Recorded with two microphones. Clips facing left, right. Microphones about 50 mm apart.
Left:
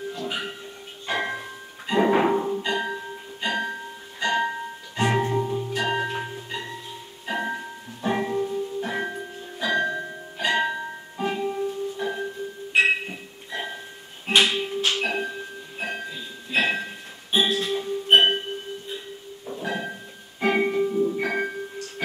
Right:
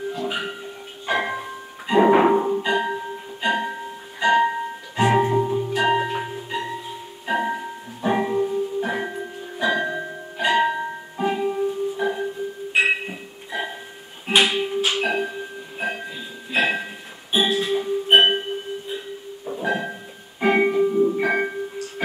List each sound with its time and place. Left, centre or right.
0.1 s music: centre
19.4 s music: centre